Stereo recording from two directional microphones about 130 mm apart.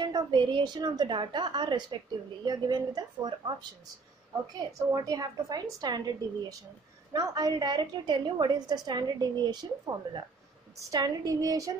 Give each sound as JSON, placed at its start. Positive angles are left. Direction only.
{"t": 0.0, "sound": "a woman's voice", "side_deg": -35}
{"t": 4.6, "sound": "a woman's voice", "side_deg": -30}